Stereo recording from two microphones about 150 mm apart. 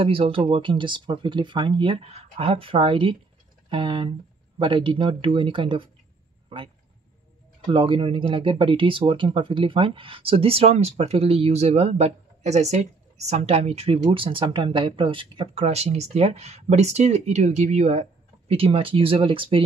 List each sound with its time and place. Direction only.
0.0 s speech: 40° right (ahead or behind)
7.7 s speech: 30° right (ahead or behind)